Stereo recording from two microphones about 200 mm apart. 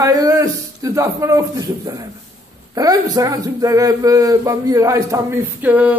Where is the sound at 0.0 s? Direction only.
15° right (ahead or behind).